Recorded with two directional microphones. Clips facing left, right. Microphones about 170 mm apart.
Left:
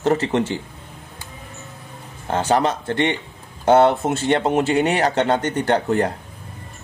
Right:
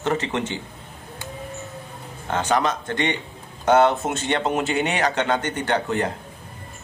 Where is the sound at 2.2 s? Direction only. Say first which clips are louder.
Left 3 dB; 35° left (ahead or behind).